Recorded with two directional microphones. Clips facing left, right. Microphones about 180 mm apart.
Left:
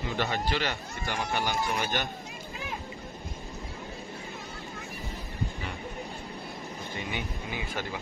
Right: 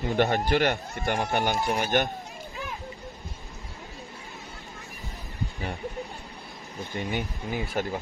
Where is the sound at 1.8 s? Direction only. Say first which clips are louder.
Right 6 dB; 55° right (ahead or behind).